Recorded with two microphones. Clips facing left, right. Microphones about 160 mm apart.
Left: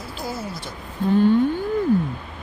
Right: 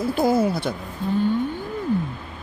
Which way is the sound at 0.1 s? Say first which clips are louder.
Right 11 dB; 55° right (ahead or behind).